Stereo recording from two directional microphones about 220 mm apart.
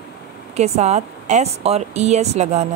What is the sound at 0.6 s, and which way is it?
Speech, 30° right (ahead or behind).